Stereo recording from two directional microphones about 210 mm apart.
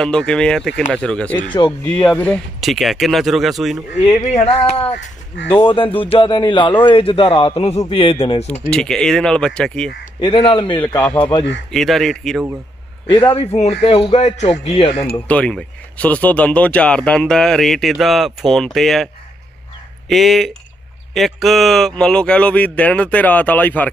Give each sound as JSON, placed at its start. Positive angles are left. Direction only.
{"t": 0.0, "sound": "speech", "side_deg": 5}
{"t": 1.5, "sound": "a man's voice", "side_deg": 20}
{"t": 2.0, "sound": "speech", "side_deg": 5}
{"t": 4.0, "sound": "a man's voice", "side_deg": 30}
{"t": 8.6, "sound": "speech", "side_deg": 5}
{"t": 10.2, "sound": "a man's voice", "side_deg": 25}
{"t": 11.7, "sound": "speech", "side_deg": 0}
{"t": 13.1, "sound": "a man's voice", "side_deg": 25}
{"t": 15.2, "sound": "speech", "side_deg": 5}
{"t": 20.1, "sound": "speech", "side_deg": 0}